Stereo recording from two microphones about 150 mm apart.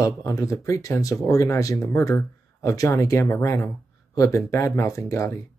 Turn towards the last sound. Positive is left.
turn(degrees=20)  # may be behind; listen again after turning